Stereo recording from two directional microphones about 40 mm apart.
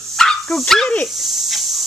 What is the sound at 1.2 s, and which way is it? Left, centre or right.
Dog, centre.